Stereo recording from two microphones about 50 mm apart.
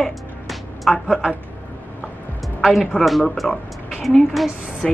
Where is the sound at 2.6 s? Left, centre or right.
Centre.